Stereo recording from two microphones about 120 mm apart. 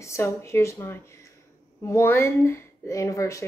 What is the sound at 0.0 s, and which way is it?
Speech, 25° left (ahead or behind).